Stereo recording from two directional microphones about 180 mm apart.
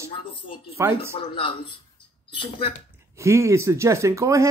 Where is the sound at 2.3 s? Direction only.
30° left (ahead or behind).